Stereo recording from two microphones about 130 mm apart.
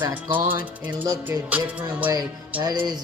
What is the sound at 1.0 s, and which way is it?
Speech, 25° right (ahead or behind).